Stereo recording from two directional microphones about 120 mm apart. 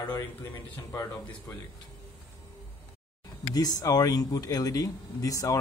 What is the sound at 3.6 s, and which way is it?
Speech, 30° left (ahead or behind).